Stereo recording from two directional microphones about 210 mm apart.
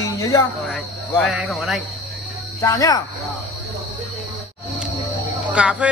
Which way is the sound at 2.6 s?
15° left (ahead or behind).